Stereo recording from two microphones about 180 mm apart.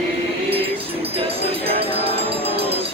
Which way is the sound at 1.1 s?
30° right (ahead or behind).